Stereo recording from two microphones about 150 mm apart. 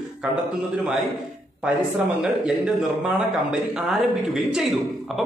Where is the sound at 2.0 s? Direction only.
5° right (ahead or behind).